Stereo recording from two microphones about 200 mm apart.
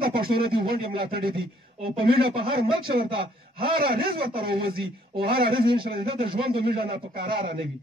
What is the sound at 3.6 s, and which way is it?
Speech, 50° right (ahead or behind).